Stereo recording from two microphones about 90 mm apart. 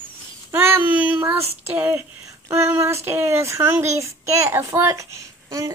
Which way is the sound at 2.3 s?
30° right (ahead or behind).